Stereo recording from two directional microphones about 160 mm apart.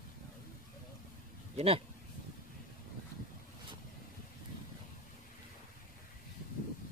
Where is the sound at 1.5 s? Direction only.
40° right (ahead or behind).